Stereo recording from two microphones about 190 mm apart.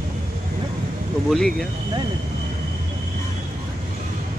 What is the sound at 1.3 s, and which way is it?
Speech, centre (ahead or behind).